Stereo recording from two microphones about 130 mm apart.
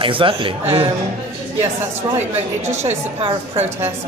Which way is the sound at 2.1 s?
60° right (ahead or behind).